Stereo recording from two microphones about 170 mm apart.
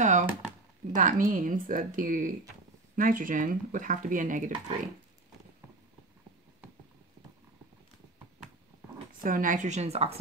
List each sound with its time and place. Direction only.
0.0 s a sound: 45° right (ahead or behind)
0.9 s speech: 50° right (ahead or behind)
9.2 s speech: 55° right (ahead or behind); by 10.1 s 35° right (ahead or behind)